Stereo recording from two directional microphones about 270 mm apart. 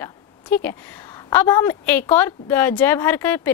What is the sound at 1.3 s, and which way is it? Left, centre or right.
Speech, centre.